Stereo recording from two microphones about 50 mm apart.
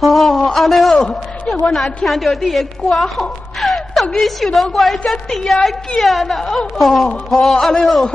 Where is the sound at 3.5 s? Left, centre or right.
Centre.